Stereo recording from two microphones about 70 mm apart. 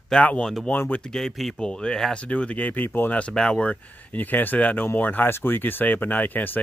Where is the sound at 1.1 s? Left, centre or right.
Centre; by 3.3 s left.